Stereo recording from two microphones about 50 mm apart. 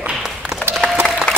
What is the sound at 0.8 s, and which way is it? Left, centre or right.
Crowd, left.